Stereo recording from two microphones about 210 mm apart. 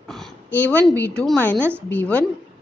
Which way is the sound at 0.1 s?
5° left (ahead or behind).